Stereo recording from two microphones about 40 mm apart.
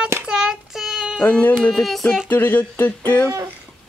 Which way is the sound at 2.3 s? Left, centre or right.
Left.